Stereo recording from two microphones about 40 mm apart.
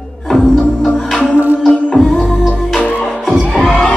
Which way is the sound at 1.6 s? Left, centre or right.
Centre.